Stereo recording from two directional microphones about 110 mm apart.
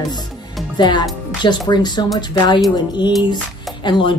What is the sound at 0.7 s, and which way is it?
A woman's voice, 40° left (ahead or behind).